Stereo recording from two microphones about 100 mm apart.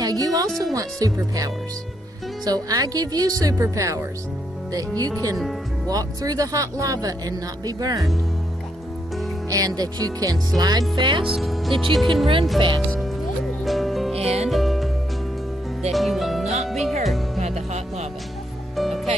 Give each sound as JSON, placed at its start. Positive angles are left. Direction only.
{"t": 0.0, "sound": "music", "side_deg": -35}
{"t": 0.7, "sound": "speech", "side_deg": -35}
{"t": 9.5, "sound": "speech", "side_deg": -40}
{"t": 11.2, "sound": "speech", "side_deg": 0}
{"t": 12.5, "sound": "speech", "side_deg": -55}
{"t": 13.7, "sound": "music", "side_deg": 0}
{"t": 14.1, "sound": "music", "side_deg": -90}
{"t": 14.5, "sound": "music", "side_deg": 0}
{"t": 15.9, "sound": "speech", "side_deg": 0}
{"t": 16.6, "sound": "music", "side_deg": 0}
{"t": 17.5, "sound": "music", "side_deg": -90}
{"t": 18.8, "sound": "music", "side_deg": 0}